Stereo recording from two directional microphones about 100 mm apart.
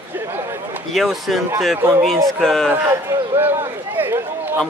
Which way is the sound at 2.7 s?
25° right (ahead or behind).